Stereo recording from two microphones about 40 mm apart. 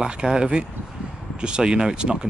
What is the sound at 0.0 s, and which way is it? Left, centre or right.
Speech, centre.